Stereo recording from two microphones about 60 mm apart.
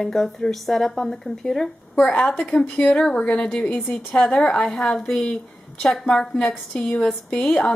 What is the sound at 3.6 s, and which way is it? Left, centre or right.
Speech, left.